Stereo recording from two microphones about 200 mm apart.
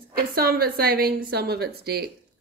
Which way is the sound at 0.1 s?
50° right (ahead or behind).